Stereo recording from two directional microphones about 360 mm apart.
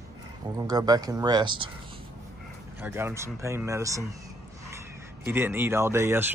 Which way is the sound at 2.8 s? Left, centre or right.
Centre.